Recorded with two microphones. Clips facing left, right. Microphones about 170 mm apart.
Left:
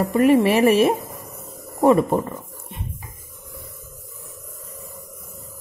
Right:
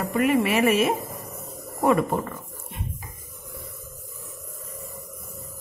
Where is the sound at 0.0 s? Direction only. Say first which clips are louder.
Left 6 dB; 30° left (ahead or behind).